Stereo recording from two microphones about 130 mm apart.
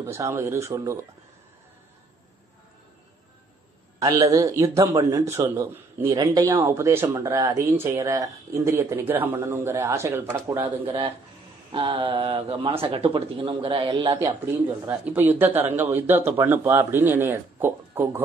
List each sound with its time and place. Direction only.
0.0 s a man's voice: 20° right (ahead or behind)
4.0 s a man's voice: 25° right (ahead or behind)
10.9 s speech: 40° right (ahead or behind)
11.7 s mantra: 40° right (ahead or behind)
12.9 s speech: 45° right (ahead or behind)
14.2 s speech: 15° right (ahead or behind)